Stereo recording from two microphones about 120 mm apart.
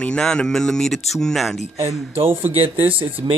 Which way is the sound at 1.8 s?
55° right (ahead or behind).